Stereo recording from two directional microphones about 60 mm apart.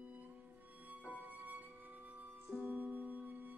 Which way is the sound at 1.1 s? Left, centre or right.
Right.